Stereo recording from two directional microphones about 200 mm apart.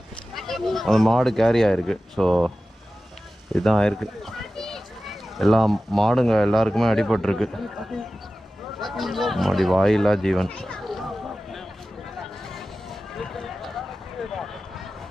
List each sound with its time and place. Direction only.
0.3 s speech: centre (ahead or behind)
3.5 s speech: centre (ahead or behind)
12.4 s a sound: centre (ahead or behind)